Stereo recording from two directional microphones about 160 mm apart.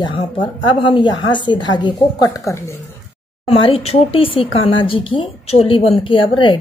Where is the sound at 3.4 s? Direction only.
40° left (ahead or behind).